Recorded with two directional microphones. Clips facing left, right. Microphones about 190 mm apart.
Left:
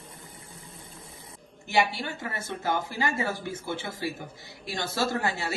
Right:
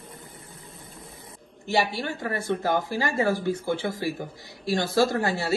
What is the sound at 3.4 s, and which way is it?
A woman's voice, 20° left (ahead or behind).